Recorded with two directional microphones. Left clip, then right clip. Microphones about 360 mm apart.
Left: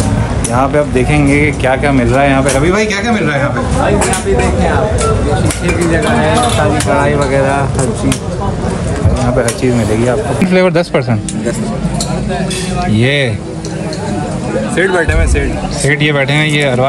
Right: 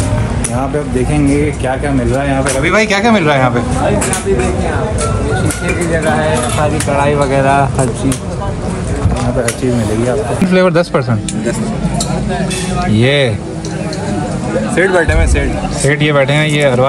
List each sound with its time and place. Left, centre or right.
1.7 s speech: centre
7.0 s speech: centre
10.0 s speech: centre
12.9 s speech: centre
14.8 s speech: centre